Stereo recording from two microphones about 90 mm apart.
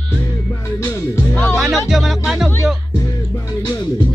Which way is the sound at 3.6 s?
50° left (ahead or behind).